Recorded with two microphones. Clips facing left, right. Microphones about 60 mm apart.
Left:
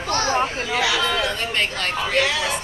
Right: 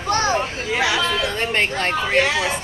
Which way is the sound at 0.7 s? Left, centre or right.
Right.